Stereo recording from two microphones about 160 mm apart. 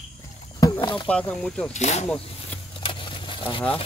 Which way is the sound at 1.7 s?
45° left (ahead or behind).